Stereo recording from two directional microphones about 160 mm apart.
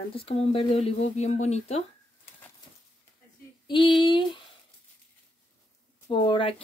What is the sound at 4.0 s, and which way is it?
Speech, 30° left (ahead or behind).